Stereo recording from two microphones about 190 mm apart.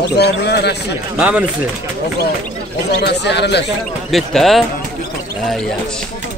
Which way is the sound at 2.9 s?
60° left (ahead or behind).